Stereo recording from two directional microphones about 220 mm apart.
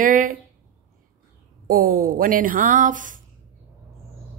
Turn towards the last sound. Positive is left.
turn(degrees=-35)  # may be behind; listen again after turning